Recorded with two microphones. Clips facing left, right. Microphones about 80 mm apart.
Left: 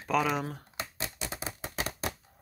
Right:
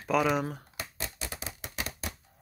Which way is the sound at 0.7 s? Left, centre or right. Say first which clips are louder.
Left 1 dB; left.